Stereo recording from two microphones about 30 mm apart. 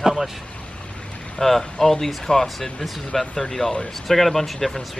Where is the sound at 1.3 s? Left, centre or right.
Centre.